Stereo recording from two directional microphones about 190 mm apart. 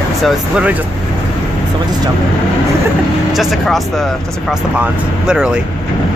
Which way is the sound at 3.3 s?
Centre (ahead or behind).